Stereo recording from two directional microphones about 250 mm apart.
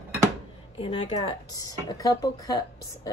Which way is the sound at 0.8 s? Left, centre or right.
Left.